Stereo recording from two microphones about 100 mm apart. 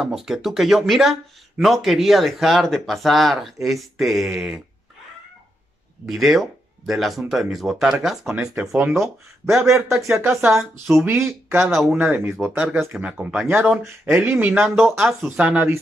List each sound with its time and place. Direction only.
0.0 s speech: 5° right (ahead or behind)
6.0 s speech: centre (ahead or behind)
8.5 s speech: 20° right (ahead or behind)
11.6 s speech: centre (ahead or behind)
11.9 s speech: 20° right (ahead or behind)
14.9 s speech: 5° right (ahead or behind)
15.2 s speech: 15° right (ahead or behind)